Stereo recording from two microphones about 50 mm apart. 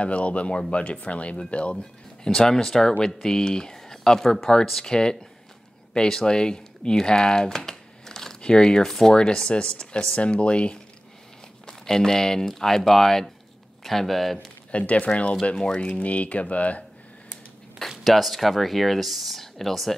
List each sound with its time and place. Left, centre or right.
0.0 s speech: left
11.6 s speech: centre
14.7 s speech: left
17.7 s speech: centre